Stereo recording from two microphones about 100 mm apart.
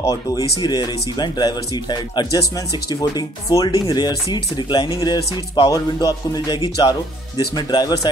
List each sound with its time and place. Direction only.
0.0 s speech: 35° left (ahead or behind)